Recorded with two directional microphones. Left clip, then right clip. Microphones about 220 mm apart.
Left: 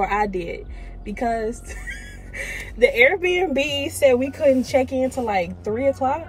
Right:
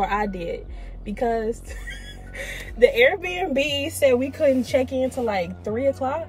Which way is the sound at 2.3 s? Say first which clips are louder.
Left 2 dB; 15° right (ahead or behind).